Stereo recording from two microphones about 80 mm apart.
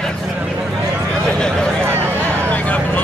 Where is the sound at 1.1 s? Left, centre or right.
Centre.